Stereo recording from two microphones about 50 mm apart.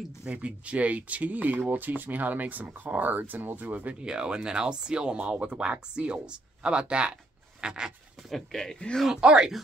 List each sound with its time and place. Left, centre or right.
0.2 s speech: right
4.0 s speech: centre
7.6 s a sound: centre
8.4 s speech: centre
8.7 s speech: left
9.1 s speech: centre